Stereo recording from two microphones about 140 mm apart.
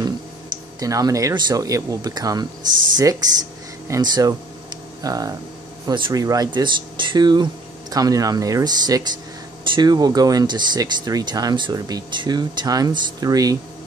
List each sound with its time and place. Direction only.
0.7 s speech: 25° right (ahead or behind)